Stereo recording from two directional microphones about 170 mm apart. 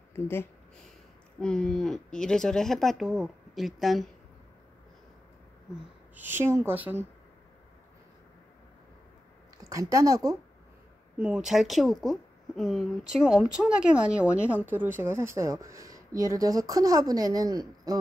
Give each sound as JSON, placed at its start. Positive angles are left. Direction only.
{"t": 0.1, "sound": "speech", "side_deg": 15}
{"t": 6.1, "sound": "speech", "side_deg": -15}
{"t": 9.6, "sound": "a woman's voice", "side_deg": -20}
{"t": 11.1, "sound": "a woman's voice", "side_deg": -5}